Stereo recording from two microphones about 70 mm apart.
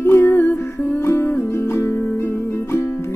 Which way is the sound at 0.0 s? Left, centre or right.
Left.